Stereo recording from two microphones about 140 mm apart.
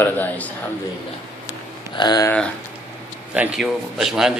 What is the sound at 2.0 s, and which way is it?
Speech, 30° left (ahead or behind).